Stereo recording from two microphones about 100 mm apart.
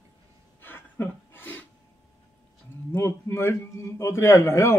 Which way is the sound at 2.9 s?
25° left (ahead or behind).